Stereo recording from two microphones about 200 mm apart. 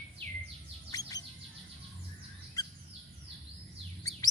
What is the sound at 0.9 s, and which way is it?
Bird, 20° left (ahead or behind).